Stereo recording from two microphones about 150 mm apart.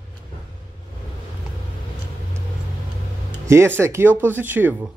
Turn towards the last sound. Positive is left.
turn(degrees=-15)  # may be behind; listen again after turning